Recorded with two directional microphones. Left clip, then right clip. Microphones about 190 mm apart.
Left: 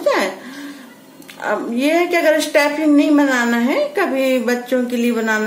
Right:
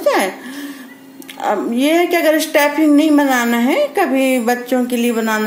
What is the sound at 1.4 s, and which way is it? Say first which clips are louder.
A woman's voice: right 2 dB; 25° right (ahead or behind).